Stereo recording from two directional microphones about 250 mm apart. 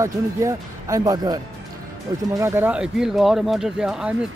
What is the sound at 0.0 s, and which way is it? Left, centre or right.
Speech, centre.